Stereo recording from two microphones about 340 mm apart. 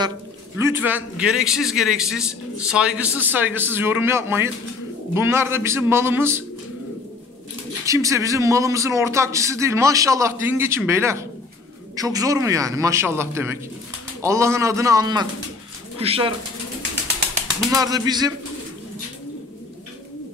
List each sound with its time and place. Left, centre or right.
0.6 s a man's voice: centre
7.8 s a man's voice: centre
17.6 s a man's voice: centre